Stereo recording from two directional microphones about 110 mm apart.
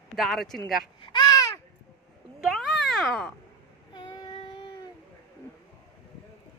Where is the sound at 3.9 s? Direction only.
45° left (ahead or behind).